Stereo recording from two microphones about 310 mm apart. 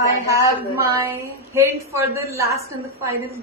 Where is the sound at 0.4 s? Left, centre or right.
Centre.